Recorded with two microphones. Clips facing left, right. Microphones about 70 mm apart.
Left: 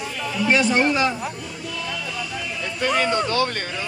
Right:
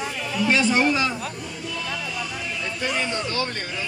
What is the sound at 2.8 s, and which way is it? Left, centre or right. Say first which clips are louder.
Speech: left 6 dB; left.